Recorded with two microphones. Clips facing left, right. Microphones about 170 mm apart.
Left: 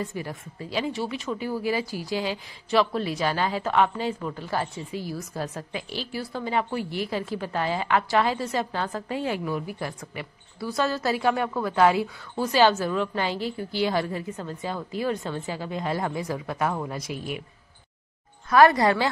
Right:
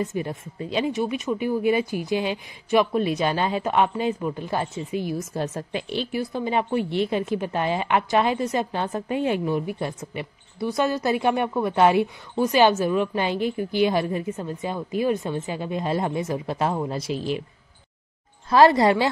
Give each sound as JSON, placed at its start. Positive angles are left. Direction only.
{"t": 0.0, "sound": "a woman's voice", "side_deg": -20}
{"t": 18.5, "sound": "a woman's voice", "side_deg": -25}